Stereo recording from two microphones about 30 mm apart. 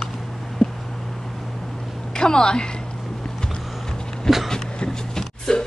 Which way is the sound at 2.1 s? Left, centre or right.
Left.